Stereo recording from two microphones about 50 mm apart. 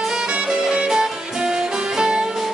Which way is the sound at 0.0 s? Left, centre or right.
Centre.